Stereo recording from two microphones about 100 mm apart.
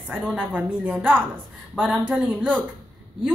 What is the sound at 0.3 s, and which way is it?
A woman's voice, 10° right (ahead or behind).